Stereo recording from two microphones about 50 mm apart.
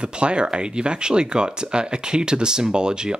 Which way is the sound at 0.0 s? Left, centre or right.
Right.